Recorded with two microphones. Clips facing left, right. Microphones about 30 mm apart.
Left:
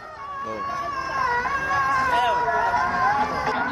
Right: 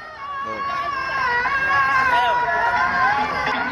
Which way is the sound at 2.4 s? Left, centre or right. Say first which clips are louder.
Right 2 dB; right.